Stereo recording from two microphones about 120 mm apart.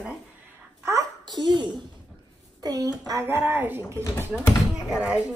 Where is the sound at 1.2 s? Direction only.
40° right (ahead or behind).